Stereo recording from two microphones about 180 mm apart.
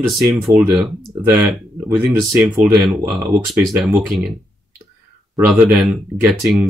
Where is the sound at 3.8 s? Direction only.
10° right (ahead or behind).